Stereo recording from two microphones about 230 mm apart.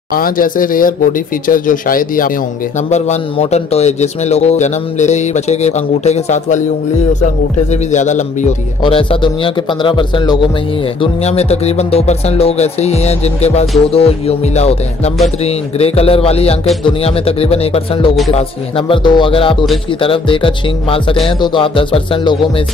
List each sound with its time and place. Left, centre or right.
0.1 s speech: left
7.7 s speech: left